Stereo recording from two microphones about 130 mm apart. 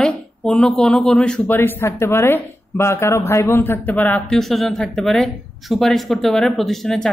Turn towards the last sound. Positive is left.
turn(degrees=5)  # may be behind; listen again after turning